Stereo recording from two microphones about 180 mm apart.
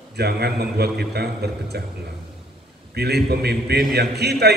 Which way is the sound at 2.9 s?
65° right (ahead or behind).